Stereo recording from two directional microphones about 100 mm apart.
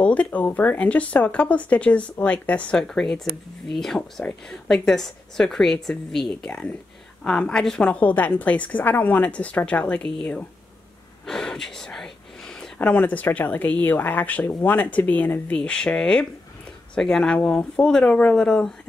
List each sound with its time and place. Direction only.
0.0 s a woman's voice: 15° left (ahead or behind)